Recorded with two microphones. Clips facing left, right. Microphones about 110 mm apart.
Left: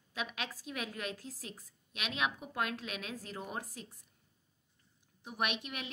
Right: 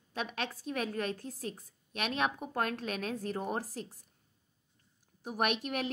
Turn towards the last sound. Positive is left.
turn(degrees=-45)  # may be behind; listen again after turning